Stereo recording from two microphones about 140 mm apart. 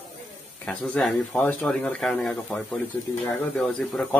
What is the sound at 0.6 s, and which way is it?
Speech, 5° left (ahead or behind).